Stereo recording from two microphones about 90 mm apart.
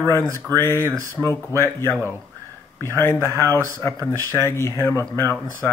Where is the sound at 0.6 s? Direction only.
30° left (ahead or behind).